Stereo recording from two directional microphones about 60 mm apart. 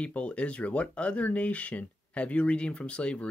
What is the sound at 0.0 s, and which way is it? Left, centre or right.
Speech, left.